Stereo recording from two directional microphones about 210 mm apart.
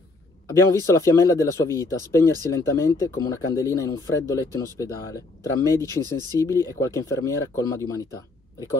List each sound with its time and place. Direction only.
0.6 s speech: 15° left (ahead or behind)
5.9 s speech: 20° right (ahead or behind)
6.4 s speech: 15° left (ahead or behind)